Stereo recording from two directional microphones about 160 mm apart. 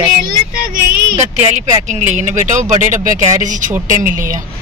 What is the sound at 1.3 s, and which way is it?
Speech, 45° right (ahead or behind).